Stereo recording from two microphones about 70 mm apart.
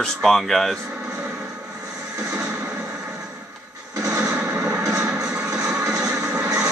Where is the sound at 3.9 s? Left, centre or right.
Right.